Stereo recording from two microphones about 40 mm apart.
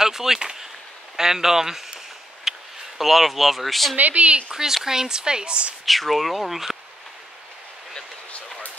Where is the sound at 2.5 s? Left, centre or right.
Centre.